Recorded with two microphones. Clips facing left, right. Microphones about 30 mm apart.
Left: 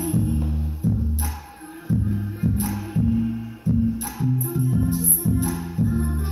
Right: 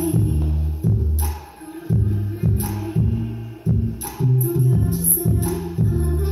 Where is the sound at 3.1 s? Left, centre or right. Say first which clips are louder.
Left 5 dB; centre.